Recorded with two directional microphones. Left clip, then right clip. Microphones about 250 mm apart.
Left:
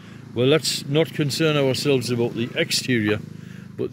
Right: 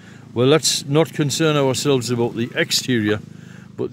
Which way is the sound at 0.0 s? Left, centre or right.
Right.